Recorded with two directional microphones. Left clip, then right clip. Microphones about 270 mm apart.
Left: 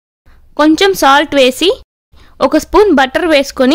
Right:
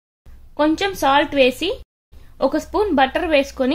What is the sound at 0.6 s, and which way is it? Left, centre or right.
A woman's voice, left.